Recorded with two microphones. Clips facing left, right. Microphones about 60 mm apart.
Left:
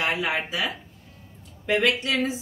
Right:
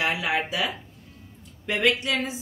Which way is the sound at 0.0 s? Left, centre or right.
Centre.